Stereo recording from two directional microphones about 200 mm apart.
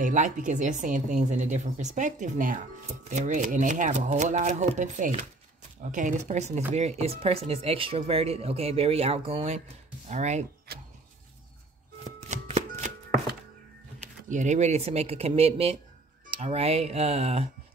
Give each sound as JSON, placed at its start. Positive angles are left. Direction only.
{"t": 0.0, "sound": "speech", "side_deg": -40}
{"t": 10.7, "sound": "a sound", "side_deg": -50}
{"t": 12.2, "sound": "chopping", "side_deg": -35}
{"t": 14.3, "sound": "speech", "side_deg": -35}